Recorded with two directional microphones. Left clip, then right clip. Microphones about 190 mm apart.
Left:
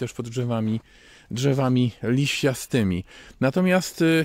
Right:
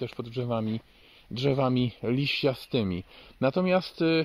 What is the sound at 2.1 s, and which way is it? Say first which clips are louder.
Speech: left 3 dB; 90° left.